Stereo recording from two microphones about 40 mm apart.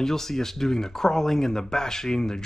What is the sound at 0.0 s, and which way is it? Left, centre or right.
Speech, centre.